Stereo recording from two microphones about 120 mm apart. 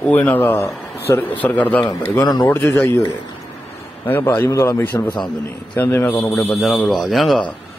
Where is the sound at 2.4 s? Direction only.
15° left (ahead or behind).